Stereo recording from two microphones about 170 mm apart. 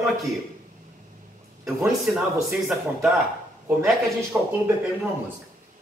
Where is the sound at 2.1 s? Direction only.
5° right (ahead or behind).